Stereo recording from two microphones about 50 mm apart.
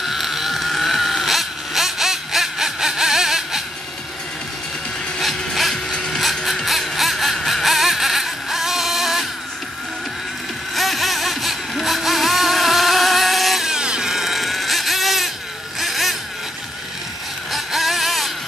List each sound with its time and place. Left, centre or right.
0.0 s vehicle: centre
5.2 s music: centre
5.9 s music: centre
6.1 s music: centre
10.7 s music: centre
13.7 s a sound: centre
15.8 s motorboat: centre
17.5 s music: centre